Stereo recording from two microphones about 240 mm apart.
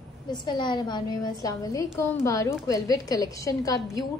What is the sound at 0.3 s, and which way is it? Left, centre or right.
A woman's voice, centre.